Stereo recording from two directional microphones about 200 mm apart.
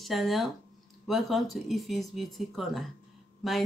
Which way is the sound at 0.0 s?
Centre (ahead or behind).